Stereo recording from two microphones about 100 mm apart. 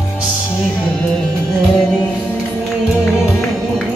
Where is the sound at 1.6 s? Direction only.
5° right (ahead or behind).